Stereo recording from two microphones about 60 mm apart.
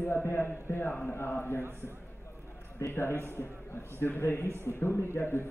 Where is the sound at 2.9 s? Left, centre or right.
Left.